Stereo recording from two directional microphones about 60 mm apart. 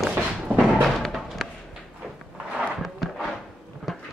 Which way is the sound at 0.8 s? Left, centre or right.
Centre.